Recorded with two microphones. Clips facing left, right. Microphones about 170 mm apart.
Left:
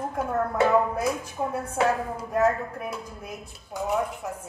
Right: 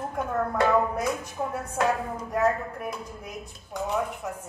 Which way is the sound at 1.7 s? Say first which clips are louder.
Left 1 dB; 10° left (ahead or behind).